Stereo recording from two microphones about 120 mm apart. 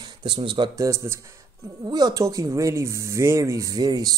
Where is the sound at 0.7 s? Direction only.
25° right (ahead or behind).